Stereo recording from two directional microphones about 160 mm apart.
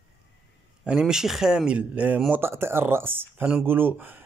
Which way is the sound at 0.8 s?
5° right (ahead or behind).